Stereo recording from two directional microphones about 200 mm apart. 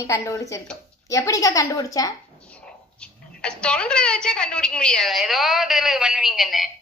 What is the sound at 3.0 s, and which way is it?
Speech, 5° left (ahead or behind).